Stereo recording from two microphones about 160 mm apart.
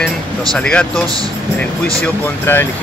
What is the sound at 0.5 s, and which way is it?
Speech, 5° left (ahead or behind).